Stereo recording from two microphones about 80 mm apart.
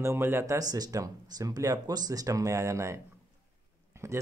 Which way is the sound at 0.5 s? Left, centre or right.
Right.